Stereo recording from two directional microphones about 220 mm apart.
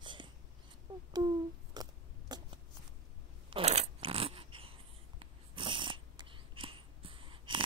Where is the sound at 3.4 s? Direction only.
25° right (ahead or behind).